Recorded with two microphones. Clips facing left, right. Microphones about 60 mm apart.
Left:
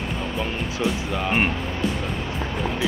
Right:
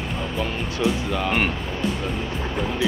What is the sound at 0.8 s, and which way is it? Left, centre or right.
Speech, centre.